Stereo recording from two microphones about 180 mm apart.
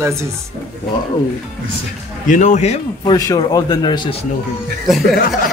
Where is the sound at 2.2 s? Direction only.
40° left (ahead or behind).